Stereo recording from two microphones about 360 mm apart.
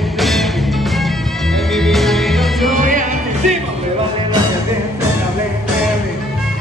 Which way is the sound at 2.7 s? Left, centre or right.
Right.